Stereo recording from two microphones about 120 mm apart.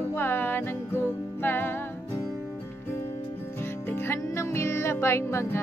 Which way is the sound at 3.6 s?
20° left (ahead or behind).